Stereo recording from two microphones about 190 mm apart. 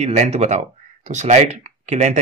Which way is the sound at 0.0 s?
35° right (ahead or behind).